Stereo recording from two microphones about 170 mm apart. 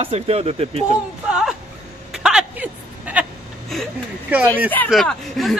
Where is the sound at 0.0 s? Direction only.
35° right (ahead or behind).